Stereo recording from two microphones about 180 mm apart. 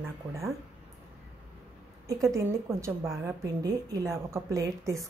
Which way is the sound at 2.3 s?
15° right (ahead or behind).